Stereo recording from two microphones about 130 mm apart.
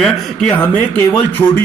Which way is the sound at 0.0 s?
5° left (ahead or behind).